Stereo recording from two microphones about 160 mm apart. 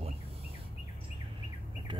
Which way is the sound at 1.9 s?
30° right (ahead or behind).